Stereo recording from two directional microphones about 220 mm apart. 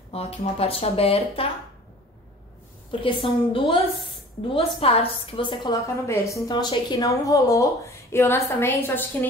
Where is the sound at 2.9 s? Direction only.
25° left (ahead or behind).